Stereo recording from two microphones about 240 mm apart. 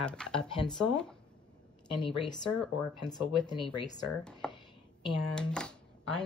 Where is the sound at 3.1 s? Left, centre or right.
Centre.